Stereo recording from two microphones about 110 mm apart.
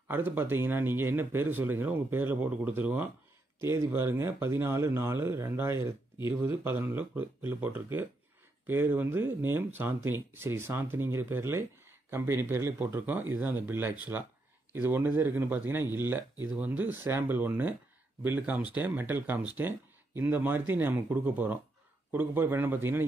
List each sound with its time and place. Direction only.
0.1 s speech: 20° right (ahead or behind)
3.6 s speech: 25° right (ahead or behind)